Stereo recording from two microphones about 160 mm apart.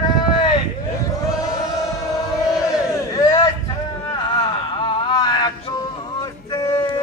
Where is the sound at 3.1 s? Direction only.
25° left (ahead or behind).